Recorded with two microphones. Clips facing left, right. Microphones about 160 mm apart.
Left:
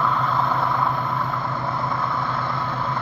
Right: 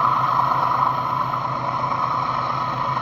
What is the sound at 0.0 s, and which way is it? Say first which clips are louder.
Vehicle: right 1 dB; 15° right (ahead or behind).